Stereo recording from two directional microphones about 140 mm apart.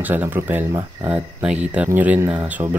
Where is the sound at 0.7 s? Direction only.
25° right (ahead or behind).